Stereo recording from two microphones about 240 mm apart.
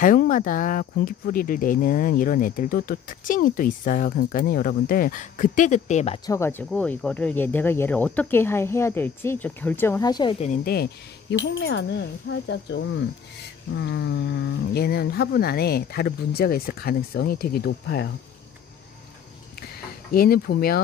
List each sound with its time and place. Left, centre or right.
0.0 s speech: left; by 10.3 s centre
10.4 s speech: left
20.1 s speech: left